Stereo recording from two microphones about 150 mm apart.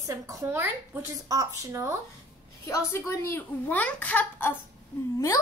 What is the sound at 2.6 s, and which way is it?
A child's voice, 15° left (ahead or behind).